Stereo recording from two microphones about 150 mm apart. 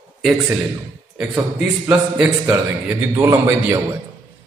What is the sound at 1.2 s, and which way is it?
A man's voice, 10° right (ahead or behind).